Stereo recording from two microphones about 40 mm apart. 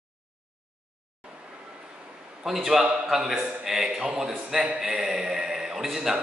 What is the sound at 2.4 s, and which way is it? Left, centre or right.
Speech, centre.